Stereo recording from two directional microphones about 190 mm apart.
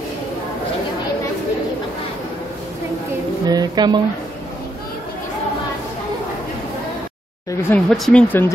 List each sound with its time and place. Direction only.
3.4 s speech: 20° right (ahead or behind)
7.7 s speech: 5° left (ahead or behind)